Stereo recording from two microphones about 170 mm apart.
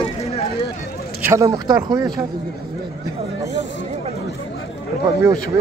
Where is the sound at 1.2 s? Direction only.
15° right (ahead or behind).